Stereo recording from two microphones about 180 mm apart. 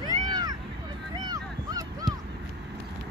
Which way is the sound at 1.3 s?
20° right (ahead or behind).